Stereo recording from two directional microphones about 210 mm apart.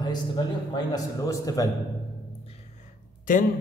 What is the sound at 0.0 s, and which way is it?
A man's voice, 20° left (ahead or behind).